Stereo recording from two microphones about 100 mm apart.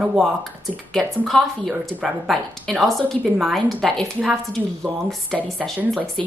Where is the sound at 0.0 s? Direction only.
Centre (ahead or behind).